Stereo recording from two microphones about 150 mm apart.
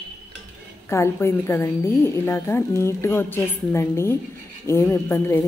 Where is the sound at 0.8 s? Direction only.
15° left (ahead or behind).